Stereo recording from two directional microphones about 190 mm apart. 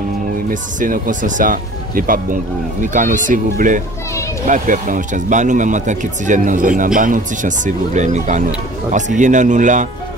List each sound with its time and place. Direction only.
0.5 s speech: 45° right (ahead or behind)